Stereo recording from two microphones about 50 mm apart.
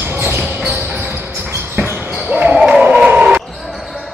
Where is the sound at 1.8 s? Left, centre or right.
Right.